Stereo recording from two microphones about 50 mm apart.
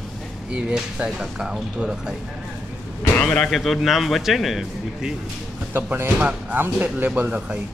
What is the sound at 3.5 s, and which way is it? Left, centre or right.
A man's voice, centre.